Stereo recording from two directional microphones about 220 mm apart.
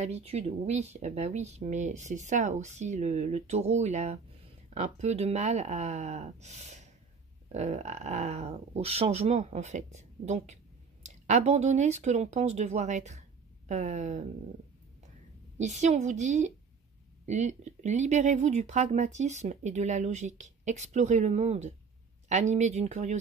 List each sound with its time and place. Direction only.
0.0 s speech: 30° right (ahead or behind)
15.5 s speech: 30° right (ahead or behind)